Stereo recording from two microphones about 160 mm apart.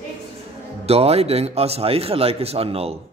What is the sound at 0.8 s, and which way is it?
Speech, 40° right (ahead or behind).